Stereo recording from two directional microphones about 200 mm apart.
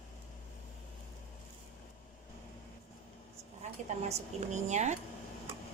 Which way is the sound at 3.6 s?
35° right (ahead or behind).